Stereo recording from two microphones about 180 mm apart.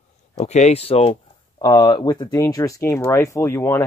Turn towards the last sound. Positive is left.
turn(degrees=15)  # may be behind; listen again after turning